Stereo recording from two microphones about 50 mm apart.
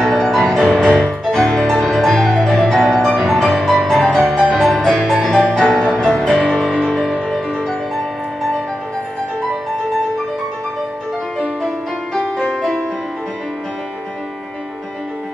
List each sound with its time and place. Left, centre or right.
0.0 s music: centre
7.9 s music: centre